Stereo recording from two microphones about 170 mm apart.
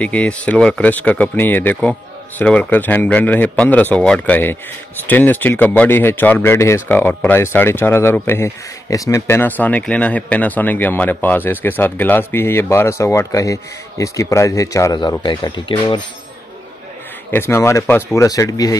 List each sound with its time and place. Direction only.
0.0 s speech: 5° left (ahead or behind); by 16.0 s 30° left (ahead or behind)
17.3 s speech: 15° left (ahead or behind)